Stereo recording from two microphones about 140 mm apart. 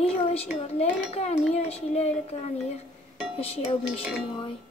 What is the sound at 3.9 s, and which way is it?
Dishes, 5° right (ahead or behind).